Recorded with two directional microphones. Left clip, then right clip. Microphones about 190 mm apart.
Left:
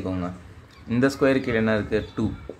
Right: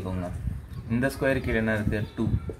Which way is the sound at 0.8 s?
40° left (ahead or behind).